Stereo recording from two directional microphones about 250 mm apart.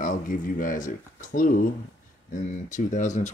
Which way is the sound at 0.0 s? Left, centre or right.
Left.